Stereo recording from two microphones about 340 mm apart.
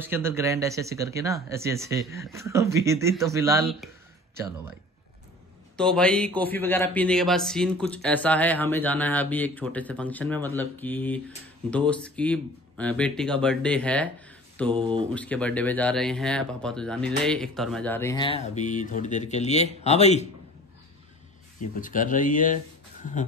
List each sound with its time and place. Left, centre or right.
0.0 s speech: centre
5.8 s a man's voice: centre
14.7 s speech: centre
15.1 s a man's voice: centre
21.8 s speech: left